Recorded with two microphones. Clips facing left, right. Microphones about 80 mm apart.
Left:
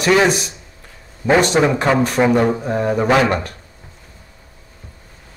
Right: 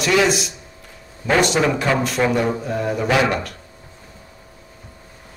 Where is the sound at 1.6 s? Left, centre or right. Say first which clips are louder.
Left 4 dB; left.